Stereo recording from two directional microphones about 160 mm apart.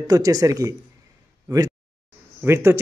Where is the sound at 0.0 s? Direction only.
20° right (ahead or behind).